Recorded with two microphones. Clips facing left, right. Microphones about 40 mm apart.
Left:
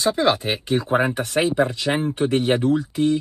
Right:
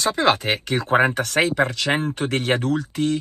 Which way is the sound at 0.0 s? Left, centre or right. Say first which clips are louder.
Even; right.